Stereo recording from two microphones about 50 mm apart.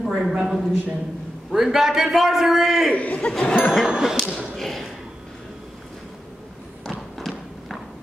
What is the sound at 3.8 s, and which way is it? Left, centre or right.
Speech, centre.